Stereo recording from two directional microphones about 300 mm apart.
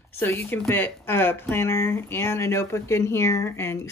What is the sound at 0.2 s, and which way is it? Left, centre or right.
Speech, centre.